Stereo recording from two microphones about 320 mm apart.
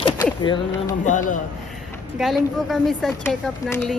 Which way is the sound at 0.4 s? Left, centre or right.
Centre.